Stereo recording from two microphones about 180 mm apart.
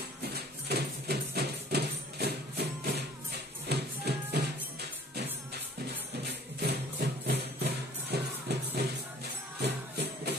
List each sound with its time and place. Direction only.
0.2 s music: 60° right (ahead or behind)